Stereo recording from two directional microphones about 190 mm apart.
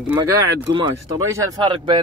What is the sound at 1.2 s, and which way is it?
Speech, 15° right (ahead or behind).